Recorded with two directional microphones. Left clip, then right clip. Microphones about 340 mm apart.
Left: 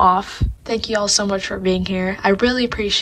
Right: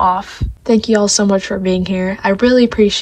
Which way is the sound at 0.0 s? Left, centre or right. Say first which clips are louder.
Even; centre.